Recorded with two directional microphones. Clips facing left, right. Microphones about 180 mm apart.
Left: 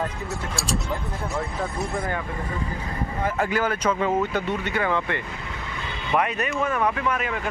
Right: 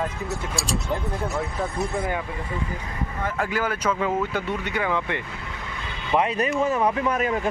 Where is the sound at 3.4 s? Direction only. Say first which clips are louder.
Left 1 dB; 5° right (ahead or behind).